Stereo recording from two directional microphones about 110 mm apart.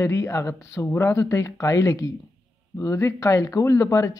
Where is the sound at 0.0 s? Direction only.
25° left (ahead or behind).